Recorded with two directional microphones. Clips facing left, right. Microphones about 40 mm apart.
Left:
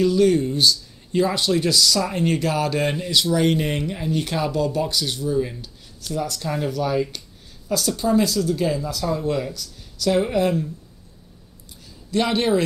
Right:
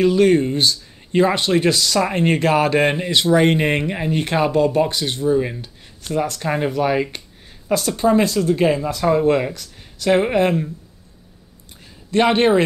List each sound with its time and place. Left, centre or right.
0.0 s speech: right
12.1 s speech: right